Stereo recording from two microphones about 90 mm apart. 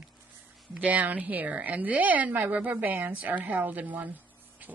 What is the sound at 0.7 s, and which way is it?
Speech, 15° right (ahead or behind).